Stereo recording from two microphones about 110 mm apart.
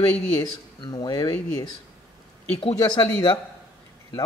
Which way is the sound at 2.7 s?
35° left (ahead or behind).